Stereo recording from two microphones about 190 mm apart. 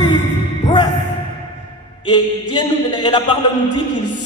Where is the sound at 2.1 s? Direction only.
25° left (ahead or behind).